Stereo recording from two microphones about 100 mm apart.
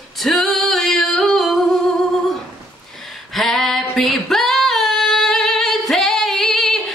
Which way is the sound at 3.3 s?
5° left (ahead or behind).